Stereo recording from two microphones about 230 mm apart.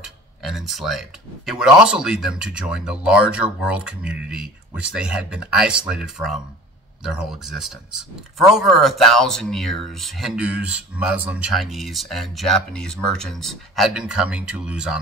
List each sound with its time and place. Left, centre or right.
0.0 s speech: centre